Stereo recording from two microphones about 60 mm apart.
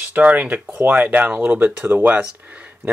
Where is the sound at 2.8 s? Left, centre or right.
Right.